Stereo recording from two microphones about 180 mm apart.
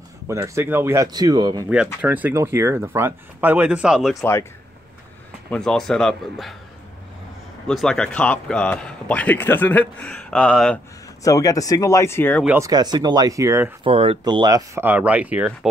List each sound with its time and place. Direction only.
0.3 s speech: 15° right (ahead or behind)
2.0 s speech: 10° right (ahead or behind)
4.2 s a man's voice: 15° left (ahead or behind)
5.5 s speech: 5° left (ahead or behind)
7.6 s a man's voice: centre (ahead or behind)
11.2 s a man's voice: 20° left (ahead or behind)
12.4 s speech: 15° right (ahead or behind)
13.8 s speech: 30° right (ahead or behind); by 15.7 s 5° right (ahead or behind)